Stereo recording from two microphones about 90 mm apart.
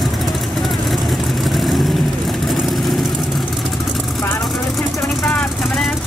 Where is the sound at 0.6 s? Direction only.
Centre (ahead or behind).